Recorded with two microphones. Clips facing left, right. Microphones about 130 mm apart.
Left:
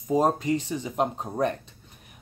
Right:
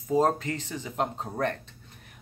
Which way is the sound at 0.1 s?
15° left (ahead or behind).